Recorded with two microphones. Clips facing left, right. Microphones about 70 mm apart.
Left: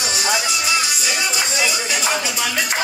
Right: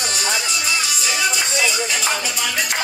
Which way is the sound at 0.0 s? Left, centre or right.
Centre.